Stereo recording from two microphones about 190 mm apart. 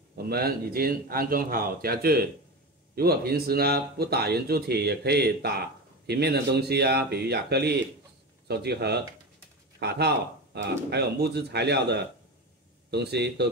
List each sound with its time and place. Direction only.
0.3 s a man's voice: 55° right (ahead or behind)